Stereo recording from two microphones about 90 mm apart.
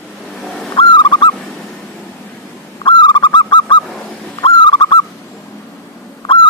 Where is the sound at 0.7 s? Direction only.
60° left (ahead or behind).